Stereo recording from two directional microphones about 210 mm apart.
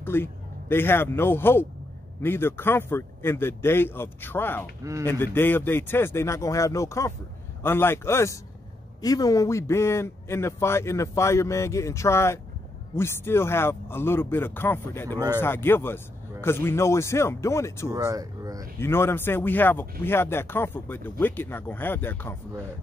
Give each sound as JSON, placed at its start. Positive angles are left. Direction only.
{"t": 0.0, "sound": "a man's voice", "side_deg": 10}
{"t": 15.1, "sound": "speech", "side_deg": -20}
{"t": 15.4, "sound": "speech", "side_deg": 10}
{"t": 17.8, "sound": "a sound", "side_deg": -15}
{"t": 18.8, "sound": "speech", "side_deg": 10}